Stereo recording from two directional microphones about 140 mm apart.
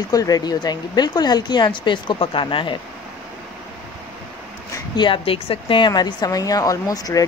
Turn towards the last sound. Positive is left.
turn(degrees=25)  # may be behind; listen again after turning